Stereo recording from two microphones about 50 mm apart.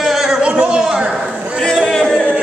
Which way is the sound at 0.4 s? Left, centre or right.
Right.